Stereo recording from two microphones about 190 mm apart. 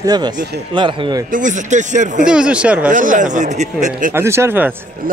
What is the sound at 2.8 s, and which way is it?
Speech, 45° right (ahead or behind).